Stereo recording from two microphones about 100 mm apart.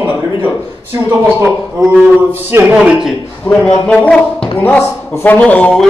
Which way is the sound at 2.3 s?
20° right (ahead or behind).